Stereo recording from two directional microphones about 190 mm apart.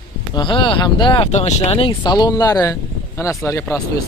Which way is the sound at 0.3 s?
25° left (ahead or behind).